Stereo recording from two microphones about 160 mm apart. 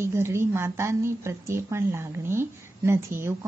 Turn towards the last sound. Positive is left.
turn(degrees=-15)  # may be behind; listen again after turning